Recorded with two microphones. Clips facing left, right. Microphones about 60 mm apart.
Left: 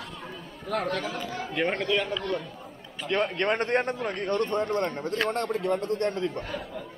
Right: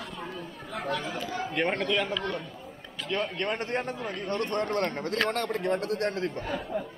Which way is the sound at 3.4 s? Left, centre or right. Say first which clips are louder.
Left 5 dB; left.